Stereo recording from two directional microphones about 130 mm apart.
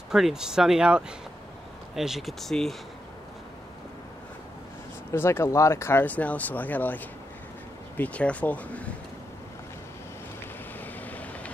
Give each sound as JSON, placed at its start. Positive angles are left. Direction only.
{"t": 0.1, "sound": "speech", "side_deg": -5}
{"t": 5.1, "sound": "speech", "side_deg": 20}
{"t": 8.0, "sound": "speech", "side_deg": 10}
{"t": 10.8, "sound": "vehicle", "side_deg": 10}